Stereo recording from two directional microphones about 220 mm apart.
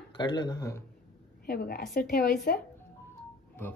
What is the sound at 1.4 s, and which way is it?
A woman's voice, 45° left (ahead or behind).